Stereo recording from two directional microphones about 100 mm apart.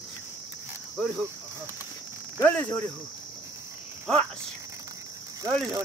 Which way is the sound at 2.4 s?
15° left (ahead or behind).